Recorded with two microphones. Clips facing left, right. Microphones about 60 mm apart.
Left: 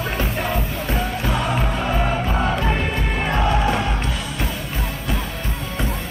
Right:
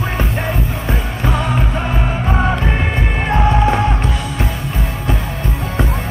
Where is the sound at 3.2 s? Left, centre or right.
Right.